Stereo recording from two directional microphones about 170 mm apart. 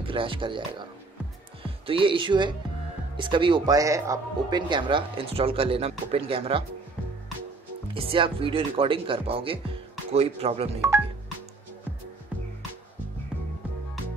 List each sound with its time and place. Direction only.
0.0 s speech: 30° right (ahead or behind)
1.6 s speech: 30° right (ahead or behind)
7.9 s speech: 30° right (ahead or behind)